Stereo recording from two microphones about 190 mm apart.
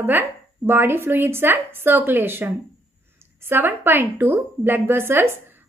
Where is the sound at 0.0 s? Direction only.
10° right (ahead or behind).